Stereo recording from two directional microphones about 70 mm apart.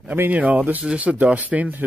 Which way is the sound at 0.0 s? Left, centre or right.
Right.